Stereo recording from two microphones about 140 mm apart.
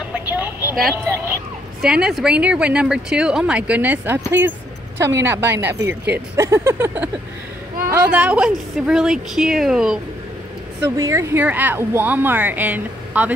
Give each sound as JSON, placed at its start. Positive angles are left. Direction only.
{"t": 0.1, "sound": "vehicle", "side_deg": -10}
{"t": 1.8, "sound": "speech", "side_deg": -5}
{"t": 8.1, "sound": "a woman's voice", "side_deg": -10}
{"t": 11.0, "sound": "speech", "side_deg": -20}